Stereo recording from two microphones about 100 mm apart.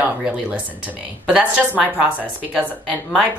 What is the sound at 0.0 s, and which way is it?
Speech, 15° right (ahead or behind).